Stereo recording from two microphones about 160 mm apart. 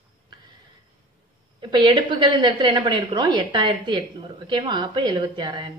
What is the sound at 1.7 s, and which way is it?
A woman's voice, 30° right (ahead or behind).